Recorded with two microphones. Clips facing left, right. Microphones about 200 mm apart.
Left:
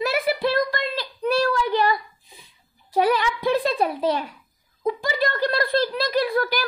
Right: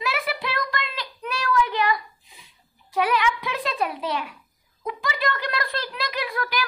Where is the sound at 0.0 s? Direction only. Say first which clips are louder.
Left 7 dB; 40° left (ahead or behind).